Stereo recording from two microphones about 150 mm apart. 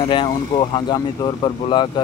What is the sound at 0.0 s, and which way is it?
Speech, 35° left (ahead or behind).